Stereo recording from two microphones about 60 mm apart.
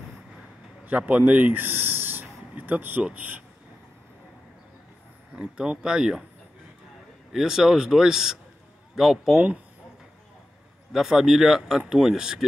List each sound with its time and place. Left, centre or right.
0.8 s speech: right
5.3 s speech: centre
7.3 s speech: centre
10.9 s speech: centre